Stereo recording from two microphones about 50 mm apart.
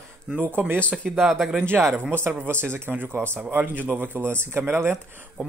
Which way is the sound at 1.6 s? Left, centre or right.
Right.